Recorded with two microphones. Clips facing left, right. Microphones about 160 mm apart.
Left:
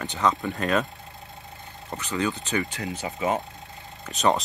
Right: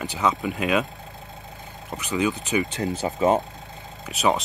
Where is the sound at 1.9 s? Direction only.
15° right (ahead or behind).